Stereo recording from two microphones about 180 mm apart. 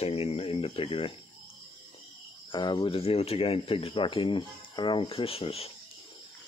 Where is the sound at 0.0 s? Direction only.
35° left (ahead or behind).